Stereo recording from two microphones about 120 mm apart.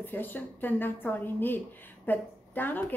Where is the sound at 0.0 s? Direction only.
15° left (ahead or behind).